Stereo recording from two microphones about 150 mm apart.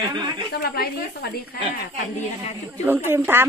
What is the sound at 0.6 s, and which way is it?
Speech, 90° left.